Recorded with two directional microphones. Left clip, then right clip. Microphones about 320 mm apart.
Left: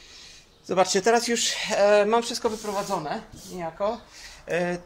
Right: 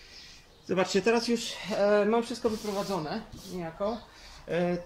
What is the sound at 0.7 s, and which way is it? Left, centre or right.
Speech, centre.